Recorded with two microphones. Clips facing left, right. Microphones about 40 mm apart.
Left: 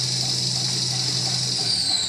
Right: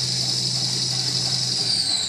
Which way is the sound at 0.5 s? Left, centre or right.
Centre.